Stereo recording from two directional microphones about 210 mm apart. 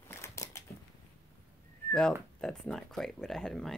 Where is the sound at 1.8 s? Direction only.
5° left (ahead or behind).